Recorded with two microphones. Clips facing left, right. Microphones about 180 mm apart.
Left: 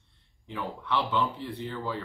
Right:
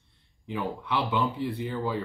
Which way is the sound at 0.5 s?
10° right (ahead or behind).